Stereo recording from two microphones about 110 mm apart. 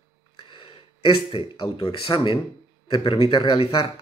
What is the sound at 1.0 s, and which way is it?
Speech, 50° left (ahead or behind).